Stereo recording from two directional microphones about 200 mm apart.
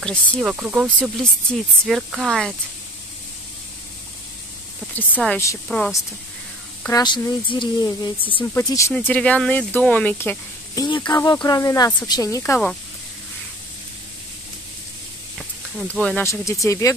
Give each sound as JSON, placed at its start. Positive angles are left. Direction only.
{"t": 0.0, "sound": "speech", "side_deg": 0}
{"t": 4.9, "sound": "speech", "side_deg": 5}
{"t": 6.8, "sound": "speech", "side_deg": 20}
{"t": 15.3, "sound": "a sound", "side_deg": -5}
{"t": 16.0, "sound": "speech", "side_deg": 10}